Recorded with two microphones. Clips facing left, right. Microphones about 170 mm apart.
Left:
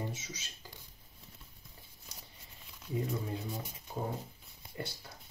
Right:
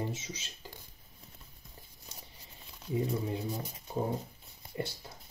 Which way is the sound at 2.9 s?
25° right (ahead or behind).